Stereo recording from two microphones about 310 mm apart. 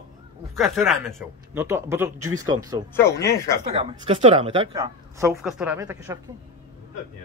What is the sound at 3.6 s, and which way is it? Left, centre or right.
A woman's voice, centre.